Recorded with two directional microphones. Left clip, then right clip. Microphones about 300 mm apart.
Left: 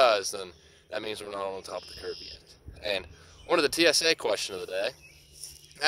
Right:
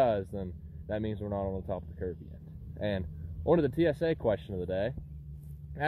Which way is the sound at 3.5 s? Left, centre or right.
Centre.